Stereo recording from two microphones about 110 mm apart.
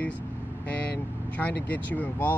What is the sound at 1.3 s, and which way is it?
Speech, 15° left (ahead or behind).